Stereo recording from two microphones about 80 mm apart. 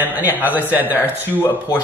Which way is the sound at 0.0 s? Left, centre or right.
Right.